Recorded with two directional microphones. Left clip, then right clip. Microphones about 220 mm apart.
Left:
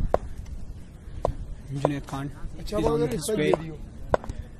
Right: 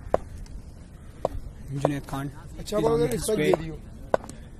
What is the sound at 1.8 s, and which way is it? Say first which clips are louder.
Speech: even; 5° right (ahead or behind).